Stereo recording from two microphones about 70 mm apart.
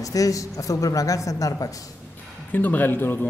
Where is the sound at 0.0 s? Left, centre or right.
Left.